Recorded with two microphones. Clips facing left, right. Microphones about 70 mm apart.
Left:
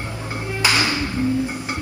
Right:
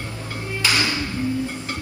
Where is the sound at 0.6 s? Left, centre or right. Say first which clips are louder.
Left 2 dB; left.